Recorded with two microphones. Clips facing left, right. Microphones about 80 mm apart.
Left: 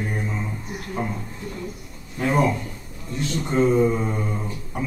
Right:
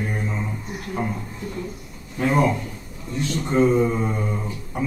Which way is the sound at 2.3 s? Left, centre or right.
Right.